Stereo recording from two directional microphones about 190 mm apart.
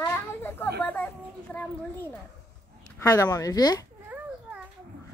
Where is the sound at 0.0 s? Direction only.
10° left (ahead or behind).